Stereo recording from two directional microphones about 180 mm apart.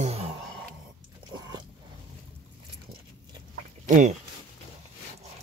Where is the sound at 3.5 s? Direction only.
45° right (ahead or behind).